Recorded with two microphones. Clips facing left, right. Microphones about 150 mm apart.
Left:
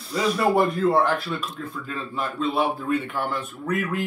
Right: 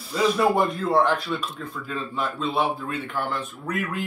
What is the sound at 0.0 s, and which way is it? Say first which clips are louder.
Speech: right 1 dB; centre (ahead or behind).